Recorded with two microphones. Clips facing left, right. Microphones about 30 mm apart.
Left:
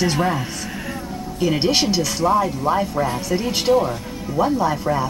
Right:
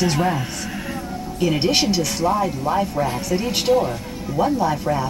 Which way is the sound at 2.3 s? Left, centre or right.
Centre.